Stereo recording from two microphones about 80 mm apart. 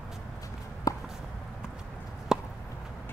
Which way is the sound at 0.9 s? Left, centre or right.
Left.